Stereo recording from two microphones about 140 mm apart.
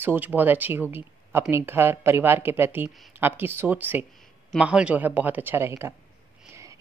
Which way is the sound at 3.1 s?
15° right (ahead or behind).